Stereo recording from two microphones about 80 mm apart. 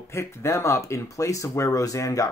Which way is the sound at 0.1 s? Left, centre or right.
Left.